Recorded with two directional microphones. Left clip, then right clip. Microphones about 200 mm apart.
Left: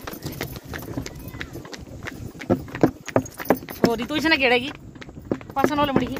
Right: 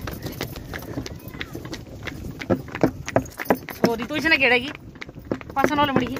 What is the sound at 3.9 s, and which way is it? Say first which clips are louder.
Speech: right 2 dB; 70° left (ahead or behind).